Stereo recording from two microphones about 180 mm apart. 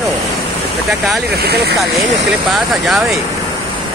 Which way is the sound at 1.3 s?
65° right (ahead or behind).